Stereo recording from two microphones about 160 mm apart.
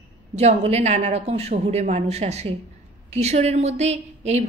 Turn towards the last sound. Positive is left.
turn(degrees=-45)  # may be behind; listen again after turning